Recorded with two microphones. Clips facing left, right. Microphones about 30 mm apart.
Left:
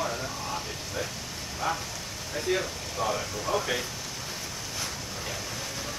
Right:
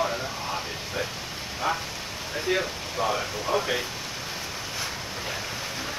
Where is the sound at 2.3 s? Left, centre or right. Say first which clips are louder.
Right 2 dB; centre.